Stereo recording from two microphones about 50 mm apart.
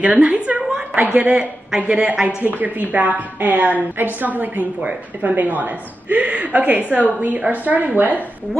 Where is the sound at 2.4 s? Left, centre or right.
Right.